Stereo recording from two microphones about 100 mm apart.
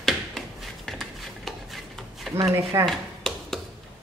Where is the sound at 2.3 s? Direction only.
30° right (ahead or behind).